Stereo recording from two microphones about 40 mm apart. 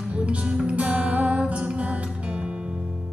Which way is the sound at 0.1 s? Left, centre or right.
Right.